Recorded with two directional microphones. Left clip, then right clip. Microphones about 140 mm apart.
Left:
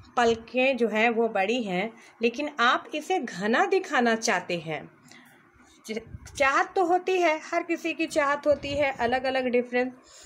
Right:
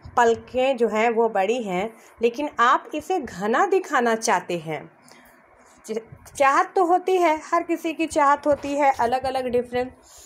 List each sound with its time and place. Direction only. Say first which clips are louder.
0.1 s a woman's voice: right 5 dB; 15° right (ahead or behind)
5.9 s a woman's voice: right 5 dB; 10° right (ahead or behind)